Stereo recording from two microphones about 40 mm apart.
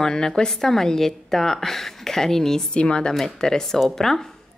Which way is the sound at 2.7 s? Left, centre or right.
Left.